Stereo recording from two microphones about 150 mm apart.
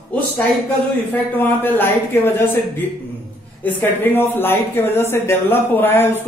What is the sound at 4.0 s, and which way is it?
Speech, 15° left (ahead or behind).